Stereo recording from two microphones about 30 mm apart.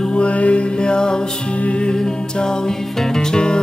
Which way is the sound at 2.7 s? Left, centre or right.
Centre.